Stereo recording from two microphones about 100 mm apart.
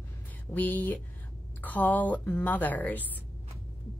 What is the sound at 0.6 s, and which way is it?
A woman's voice, 15° left (ahead or behind).